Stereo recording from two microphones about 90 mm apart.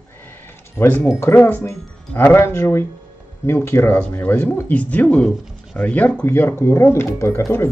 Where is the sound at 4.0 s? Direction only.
15° left (ahead or behind).